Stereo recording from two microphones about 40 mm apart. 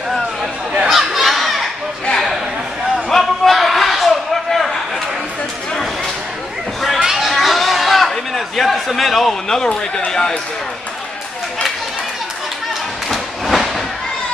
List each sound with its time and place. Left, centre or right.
0.8 s crowd: centre
3.1 s a sound: centre
7.0 s chatter: centre
9.7 s speech: left
13.1 s train: centre